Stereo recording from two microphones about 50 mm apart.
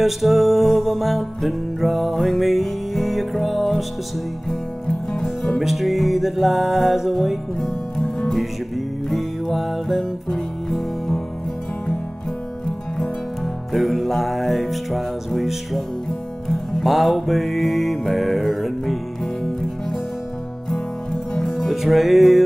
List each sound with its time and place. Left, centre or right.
0.0 s music: centre
5.2 s music: centre
5.6 s music: centre
13.7 s music: centre
20.7 s music: centre
21.5 s music: centre